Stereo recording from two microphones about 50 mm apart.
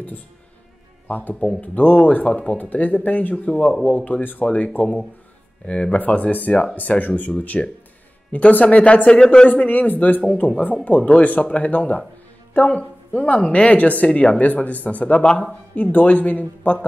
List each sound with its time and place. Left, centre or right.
1.0 s speech: left
2.6 s speech: left
5.7 s speech: left
9.5 s speech: left
14.4 s speech: left